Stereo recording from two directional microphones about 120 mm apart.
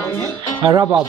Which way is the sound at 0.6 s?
35° right (ahead or behind).